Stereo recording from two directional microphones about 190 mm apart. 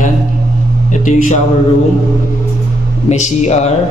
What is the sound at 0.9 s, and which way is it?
Speech, 40° left (ahead or behind).